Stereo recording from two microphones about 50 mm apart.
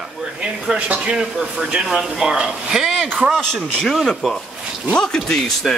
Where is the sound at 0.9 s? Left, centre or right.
Right.